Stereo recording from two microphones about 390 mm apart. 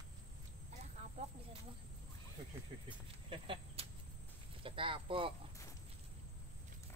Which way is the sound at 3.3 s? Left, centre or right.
Centre.